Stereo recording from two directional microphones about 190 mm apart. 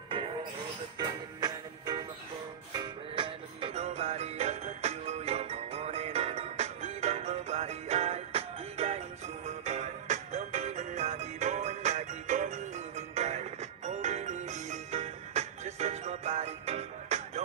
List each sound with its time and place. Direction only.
0.9 s music: 20° right (ahead or behind)